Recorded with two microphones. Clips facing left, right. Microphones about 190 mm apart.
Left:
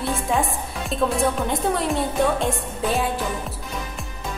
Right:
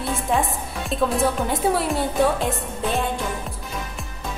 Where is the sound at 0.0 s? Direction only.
Centre (ahead or behind).